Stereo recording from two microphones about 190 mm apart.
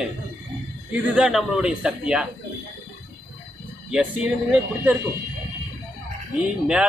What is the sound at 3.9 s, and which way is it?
Speech, 5° right (ahead or behind).